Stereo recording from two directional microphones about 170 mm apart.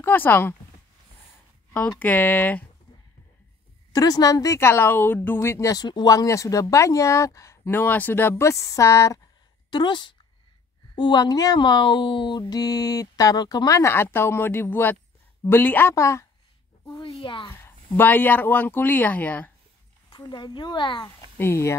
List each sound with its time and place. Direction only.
0.0 s speech: 10° left (ahead or behind)
1.7 s speech: 5° left (ahead or behind)
3.9 s speech: 20° left (ahead or behind)
17.0 s a woman's voice: 30° left (ahead or behind)
17.5 s speech: 15° left (ahead or behind)
20.1 s speech: 25° left (ahead or behind)
21.4 s speech: 15° left (ahead or behind)